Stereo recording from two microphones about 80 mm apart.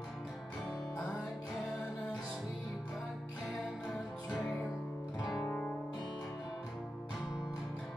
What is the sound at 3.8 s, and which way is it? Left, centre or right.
Music, centre.